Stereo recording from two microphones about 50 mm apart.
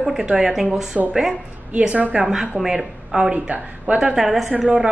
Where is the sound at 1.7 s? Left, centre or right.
Right; by 3.3 s centre.